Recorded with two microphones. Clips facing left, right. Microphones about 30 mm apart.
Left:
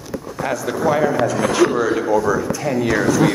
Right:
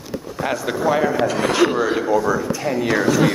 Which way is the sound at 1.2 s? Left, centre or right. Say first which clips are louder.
Left 1 dB; right.